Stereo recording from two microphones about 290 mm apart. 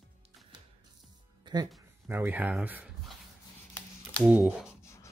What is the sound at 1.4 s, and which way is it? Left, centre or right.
Music, centre.